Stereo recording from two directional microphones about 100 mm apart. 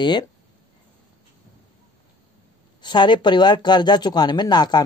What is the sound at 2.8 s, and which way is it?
Speech, 50° left (ahead or behind).